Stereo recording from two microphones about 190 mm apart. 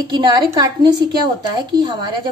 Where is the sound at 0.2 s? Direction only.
20° right (ahead or behind).